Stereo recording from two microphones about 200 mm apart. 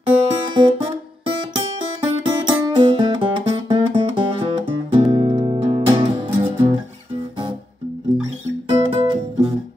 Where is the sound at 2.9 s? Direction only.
25° right (ahead or behind).